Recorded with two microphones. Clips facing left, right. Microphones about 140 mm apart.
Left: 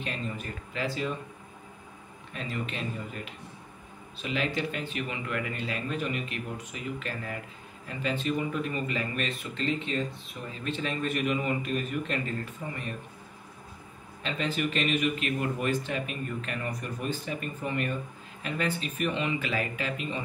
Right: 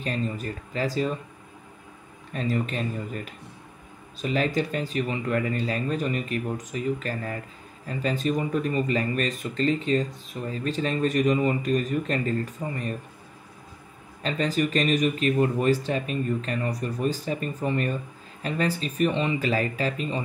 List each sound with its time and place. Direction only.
0.0 s speech: 40° right (ahead or behind)
2.3 s speech: 40° right (ahead or behind)
14.2 s speech: 40° right (ahead or behind)